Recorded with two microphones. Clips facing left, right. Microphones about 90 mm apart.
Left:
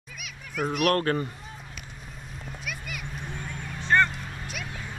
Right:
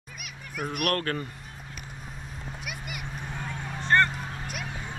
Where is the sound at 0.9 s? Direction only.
20° left (ahead or behind).